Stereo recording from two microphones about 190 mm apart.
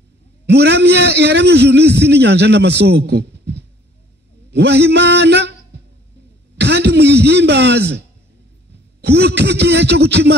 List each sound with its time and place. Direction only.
0.5 s a man's voice: 60° right (ahead or behind)
6.6 s a sound: 65° right (ahead or behind)
9.0 s a man's voice: 60° right (ahead or behind)